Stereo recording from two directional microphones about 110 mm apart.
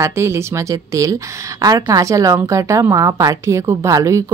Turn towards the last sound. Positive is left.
turn(degrees=-30)  # may be behind; listen again after turning